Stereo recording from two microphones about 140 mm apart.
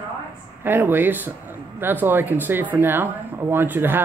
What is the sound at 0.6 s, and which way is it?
Speech, 15° right (ahead or behind).